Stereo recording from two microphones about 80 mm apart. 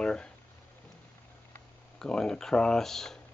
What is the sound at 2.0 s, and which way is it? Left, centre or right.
Speech, centre.